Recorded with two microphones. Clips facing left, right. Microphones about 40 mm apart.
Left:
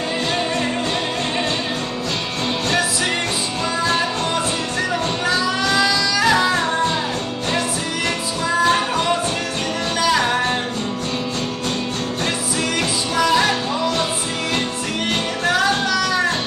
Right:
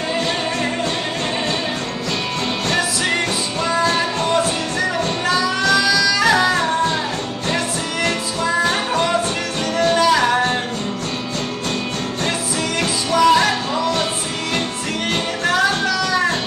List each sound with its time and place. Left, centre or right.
5.2 s music: centre
6.1 s music: centre
9.8 s music: centre
13.1 s music: centre
15.4 s music: centre